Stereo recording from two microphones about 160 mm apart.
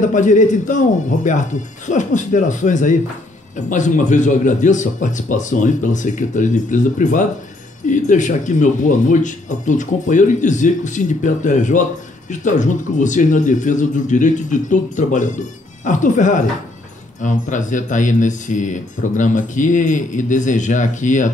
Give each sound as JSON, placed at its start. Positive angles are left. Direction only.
{"t": 0.0, "sound": "speech", "side_deg": 50}